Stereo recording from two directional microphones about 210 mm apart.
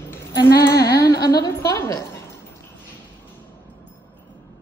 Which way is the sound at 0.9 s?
20° left (ahead or behind).